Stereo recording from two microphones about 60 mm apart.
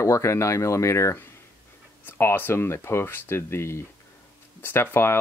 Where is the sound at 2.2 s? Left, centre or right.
Left.